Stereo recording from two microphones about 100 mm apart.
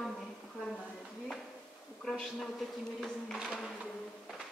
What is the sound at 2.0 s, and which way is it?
Speech, centre (ahead or behind).